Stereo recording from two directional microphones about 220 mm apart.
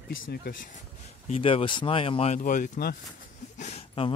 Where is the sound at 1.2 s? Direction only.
25° left (ahead or behind).